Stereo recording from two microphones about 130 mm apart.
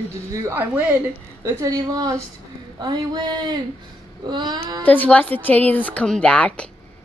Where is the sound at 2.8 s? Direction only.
35° right (ahead or behind).